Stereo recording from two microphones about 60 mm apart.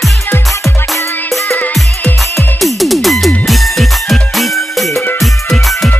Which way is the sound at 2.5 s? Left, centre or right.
Centre.